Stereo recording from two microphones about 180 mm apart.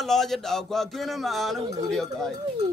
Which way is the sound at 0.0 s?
Centre (ahead or behind).